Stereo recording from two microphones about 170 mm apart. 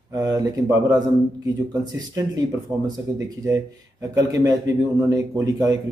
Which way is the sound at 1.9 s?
25° right (ahead or behind).